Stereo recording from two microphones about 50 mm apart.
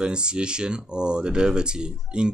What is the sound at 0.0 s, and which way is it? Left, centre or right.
Speech, centre.